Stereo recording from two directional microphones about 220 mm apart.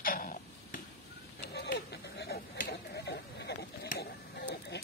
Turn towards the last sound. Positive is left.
turn(degrees=50)  # may be behind; listen again after turning